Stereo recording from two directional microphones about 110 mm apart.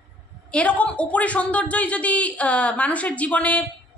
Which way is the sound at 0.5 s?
10° left (ahead or behind).